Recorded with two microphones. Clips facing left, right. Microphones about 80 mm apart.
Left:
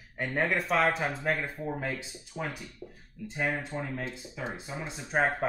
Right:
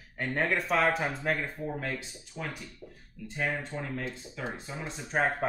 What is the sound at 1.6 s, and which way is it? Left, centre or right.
Speech, centre.